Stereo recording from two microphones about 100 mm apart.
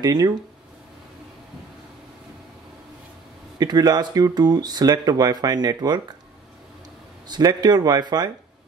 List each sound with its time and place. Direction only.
0.0 s speech: 45° right (ahead or behind)
3.5 s speech: 40° right (ahead or behind)
7.2 s speech: 45° right (ahead or behind)